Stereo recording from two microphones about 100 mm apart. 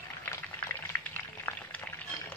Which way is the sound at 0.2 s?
20° left (ahead or behind).